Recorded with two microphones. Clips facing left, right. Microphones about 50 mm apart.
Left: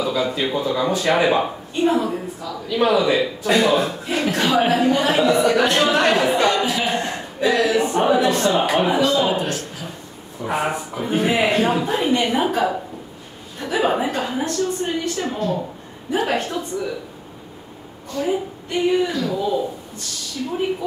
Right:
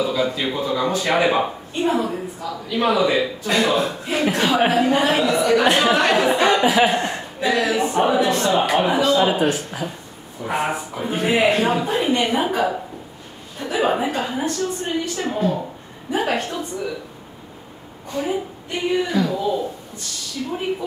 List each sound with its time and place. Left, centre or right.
0.0 s a sound: centre
0.3 s speech: centre
5.7 s speech: centre
5.9 s speech: centre
6.4 s speech: right
6.9 s speech: centre
10.4 s speech: centre
18.2 s a sound: centre
19.1 s speech: centre